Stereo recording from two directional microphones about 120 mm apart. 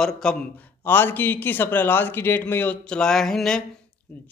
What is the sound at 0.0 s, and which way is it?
A man's voice, 5° left (ahead or behind).